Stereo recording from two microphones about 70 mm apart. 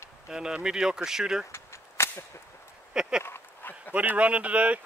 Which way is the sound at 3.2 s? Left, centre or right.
Left.